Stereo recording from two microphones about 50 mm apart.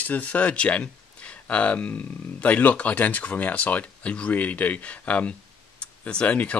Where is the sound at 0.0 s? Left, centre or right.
Left.